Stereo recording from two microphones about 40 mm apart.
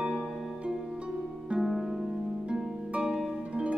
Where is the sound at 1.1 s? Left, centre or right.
Centre.